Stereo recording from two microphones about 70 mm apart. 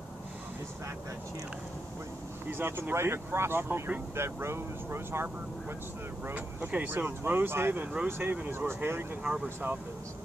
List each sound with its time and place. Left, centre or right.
2.5 s speech: right
6.3 s speech: right
7.8 s speech: centre; by 9.0 s right
9.2 s speech: centre